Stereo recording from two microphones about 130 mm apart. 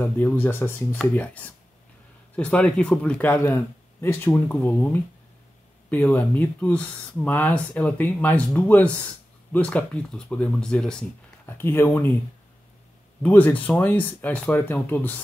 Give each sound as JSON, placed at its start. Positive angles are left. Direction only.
{"t": 0.0, "sound": "speech", "side_deg": 15}
{"t": 11.4, "sound": "speech", "side_deg": 15}
{"t": 13.2, "sound": "speech", "side_deg": 15}